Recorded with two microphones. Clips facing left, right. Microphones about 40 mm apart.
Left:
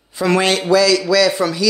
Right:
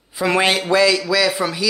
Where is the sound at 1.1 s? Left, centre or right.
Centre.